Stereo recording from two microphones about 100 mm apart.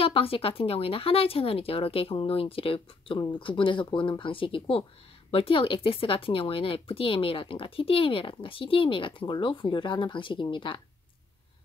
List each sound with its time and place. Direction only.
0.0 s speech: 70° left (ahead or behind)
3.2 s speech: 50° left (ahead or behind)